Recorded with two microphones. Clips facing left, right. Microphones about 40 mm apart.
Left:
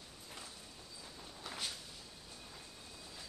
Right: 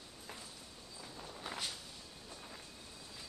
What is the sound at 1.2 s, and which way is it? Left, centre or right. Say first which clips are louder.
Walk: right 3 dB; centre.